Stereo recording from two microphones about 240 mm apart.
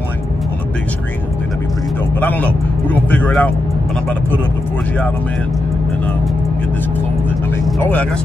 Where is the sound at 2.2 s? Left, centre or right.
Centre.